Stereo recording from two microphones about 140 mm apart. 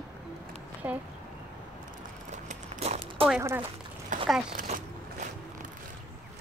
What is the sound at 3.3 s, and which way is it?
Speech, 15° right (ahead or behind).